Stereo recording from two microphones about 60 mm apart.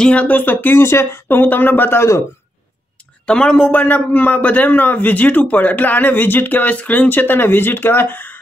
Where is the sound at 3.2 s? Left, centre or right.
Centre.